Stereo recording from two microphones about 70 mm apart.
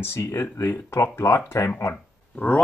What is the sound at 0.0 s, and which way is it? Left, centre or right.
Speech, left.